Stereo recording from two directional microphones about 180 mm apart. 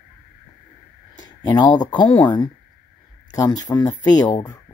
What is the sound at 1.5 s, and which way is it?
Speech, 25° left (ahead or behind).